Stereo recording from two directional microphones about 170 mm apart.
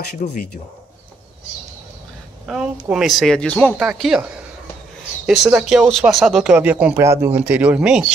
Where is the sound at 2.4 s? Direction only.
5° right (ahead or behind).